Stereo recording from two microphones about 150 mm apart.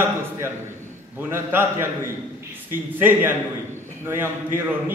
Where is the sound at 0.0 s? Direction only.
15° right (ahead or behind).